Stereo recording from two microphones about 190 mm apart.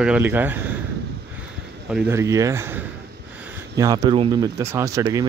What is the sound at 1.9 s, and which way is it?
Speech, 10° right (ahead or behind).